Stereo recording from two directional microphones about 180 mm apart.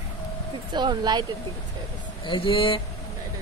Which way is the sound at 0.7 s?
25° right (ahead or behind).